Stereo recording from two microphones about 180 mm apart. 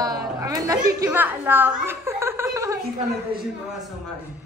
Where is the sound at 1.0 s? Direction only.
10° right (ahead or behind).